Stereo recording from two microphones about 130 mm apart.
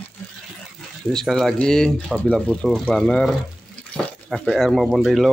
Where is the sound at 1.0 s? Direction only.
5° left (ahead or behind).